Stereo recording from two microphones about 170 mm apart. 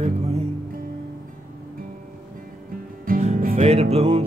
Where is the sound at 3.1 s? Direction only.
55° right (ahead or behind).